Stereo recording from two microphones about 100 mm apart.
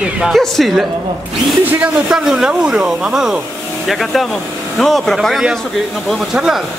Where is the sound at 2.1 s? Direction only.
5° right (ahead or behind).